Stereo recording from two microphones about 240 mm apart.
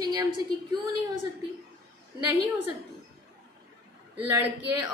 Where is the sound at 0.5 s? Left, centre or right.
Right.